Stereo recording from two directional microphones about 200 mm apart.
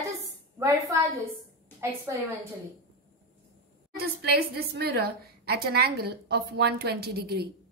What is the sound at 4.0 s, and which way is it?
A woman's voice, 50° right (ahead or behind).